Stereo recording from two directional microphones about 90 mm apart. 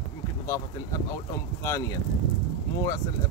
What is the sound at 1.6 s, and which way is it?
Speech, 35° left (ahead or behind).